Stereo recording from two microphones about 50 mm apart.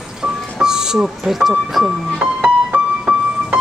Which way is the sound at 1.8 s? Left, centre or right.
Centre.